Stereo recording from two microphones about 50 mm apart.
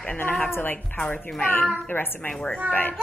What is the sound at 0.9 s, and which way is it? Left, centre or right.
A woman's voice, left.